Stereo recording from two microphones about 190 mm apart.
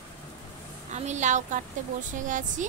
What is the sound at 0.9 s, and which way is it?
A woman's voice, 40° right (ahead or behind).